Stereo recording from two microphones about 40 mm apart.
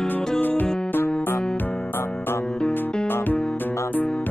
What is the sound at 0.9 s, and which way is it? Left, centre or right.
Music, left.